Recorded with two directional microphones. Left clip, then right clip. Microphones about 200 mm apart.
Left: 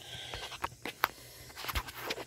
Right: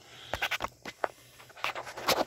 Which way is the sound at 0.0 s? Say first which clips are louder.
Left 5 dB; centre (ahead or behind).